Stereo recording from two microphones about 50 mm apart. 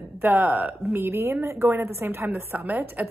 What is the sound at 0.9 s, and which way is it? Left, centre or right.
Speech, right.